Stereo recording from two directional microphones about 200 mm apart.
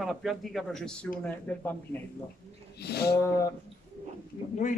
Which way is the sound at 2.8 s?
55° left (ahead or behind).